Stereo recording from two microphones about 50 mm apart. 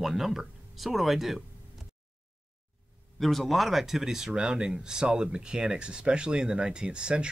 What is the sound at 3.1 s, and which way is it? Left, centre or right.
Speech, centre.